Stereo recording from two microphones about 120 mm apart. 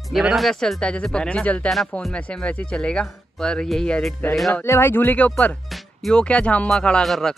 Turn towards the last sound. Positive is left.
turn(degrees=0)  # may be behind; listen again after turning